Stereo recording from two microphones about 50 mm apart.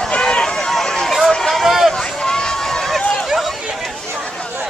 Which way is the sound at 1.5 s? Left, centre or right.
Centre.